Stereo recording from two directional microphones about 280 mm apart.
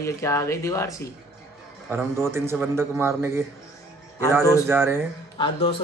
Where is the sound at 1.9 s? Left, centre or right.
Centre.